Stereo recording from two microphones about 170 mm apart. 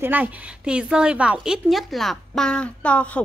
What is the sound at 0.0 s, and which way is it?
A woman's voice, 10° right (ahead or behind).